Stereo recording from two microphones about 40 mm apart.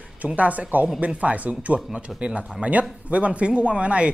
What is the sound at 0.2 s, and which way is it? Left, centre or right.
Speech, right.